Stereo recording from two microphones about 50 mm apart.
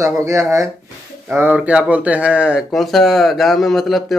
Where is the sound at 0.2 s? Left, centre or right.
Right.